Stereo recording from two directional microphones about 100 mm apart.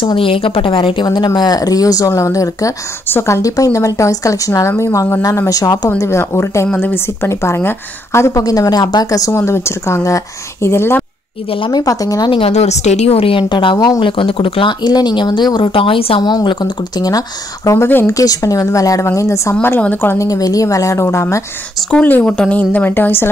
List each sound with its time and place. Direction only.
0.0 s a woman's voice: 60° left (ahead or behind); by 5.2 s 25° left (ahead or behind)
5.5 s a woman's voice: 35° left (ahead or behind)
11.7 s a woman's voice: 35° left (ahead or behind)
12.3 s a woman's voice: 70° left (ahead or behind); by 13.7 s 55° left (ahead or behind)
13.7 s a woman's voice: 40° left (ahead or behind)
14.0 s speech: 60° left (ahead or behind)
16.2 s speech: 45° left (ahead or behind)
17.6 s a woman's voice: 25° left (ahead or behind)
18.1 s a woman's voice: 35° left (ahead or behind)
20.2 s a woman's voice: 35° left (ahead or behind)
21.9 s a woman's voice: 15° left (ahead or behind)